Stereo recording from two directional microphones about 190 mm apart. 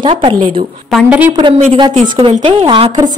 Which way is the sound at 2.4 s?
25° right (ahead or behind).